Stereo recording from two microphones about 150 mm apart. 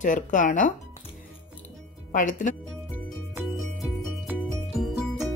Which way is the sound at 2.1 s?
60° left (ahead or behind).